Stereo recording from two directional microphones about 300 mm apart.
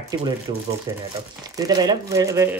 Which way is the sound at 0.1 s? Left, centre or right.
Centre.